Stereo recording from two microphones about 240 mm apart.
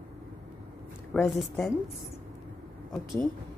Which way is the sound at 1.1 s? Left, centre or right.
Centre.